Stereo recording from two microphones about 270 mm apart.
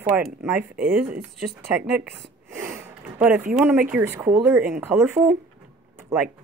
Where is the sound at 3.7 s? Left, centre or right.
Centre.